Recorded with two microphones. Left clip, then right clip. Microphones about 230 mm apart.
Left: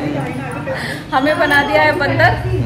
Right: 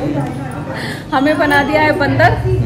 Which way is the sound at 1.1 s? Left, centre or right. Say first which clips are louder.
Right 1 dB; right.